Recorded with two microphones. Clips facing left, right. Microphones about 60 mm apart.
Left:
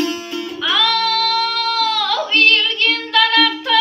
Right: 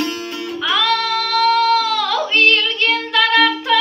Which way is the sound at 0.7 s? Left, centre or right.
Right.